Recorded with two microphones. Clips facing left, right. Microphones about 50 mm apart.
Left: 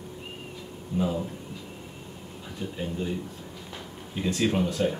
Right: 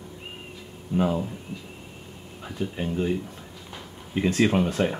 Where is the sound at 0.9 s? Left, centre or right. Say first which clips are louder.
Right 4 dB; right.